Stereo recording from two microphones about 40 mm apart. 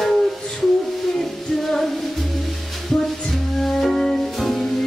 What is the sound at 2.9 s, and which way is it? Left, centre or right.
Music, centre.